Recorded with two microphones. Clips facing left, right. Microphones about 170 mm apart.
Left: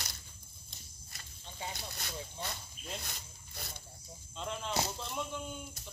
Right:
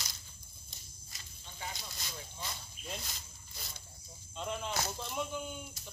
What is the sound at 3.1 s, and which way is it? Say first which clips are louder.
Cricket: left 2 dB; 55° left (ahead or behind).